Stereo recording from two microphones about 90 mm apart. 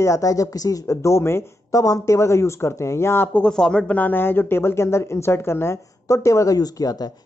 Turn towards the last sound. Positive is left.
turn(degrees=40)  # may be behind; listen again after turning